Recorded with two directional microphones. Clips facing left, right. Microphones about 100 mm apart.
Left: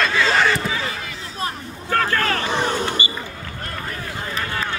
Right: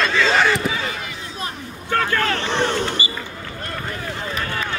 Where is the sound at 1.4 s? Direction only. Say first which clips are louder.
Left 5 dB; 40° left (ahead or behind).